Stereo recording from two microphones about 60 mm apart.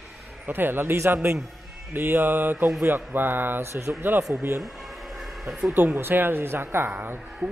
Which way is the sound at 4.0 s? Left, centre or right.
Right.